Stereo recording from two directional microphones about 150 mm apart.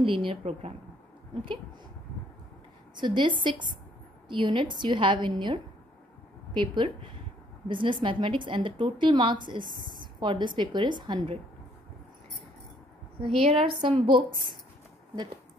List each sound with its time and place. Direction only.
0.0 s a woman's voice: 35° right (ahead or behind)
3.0 s a woman's voice: 35° right (ahead or behind)
13.4 s a woman's voice: 40° right (ahead or behind)